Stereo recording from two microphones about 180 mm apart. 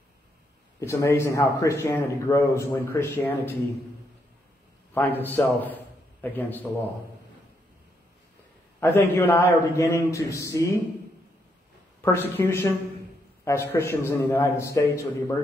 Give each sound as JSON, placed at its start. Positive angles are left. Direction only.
{"t": 0.7, "sound": "speech", "side_deg": 15}
{"t": 4.9, "sound": "speech", "side_deg": 10}
{"t": 8.7, "sound": "speech", "side_deg": 15}
{"t": 12.0, "sound": "speech", "side_deg": 15}